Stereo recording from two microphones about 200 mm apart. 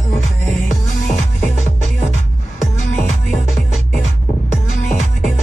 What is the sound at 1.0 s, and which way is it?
Music, 35° left (ahead or behind).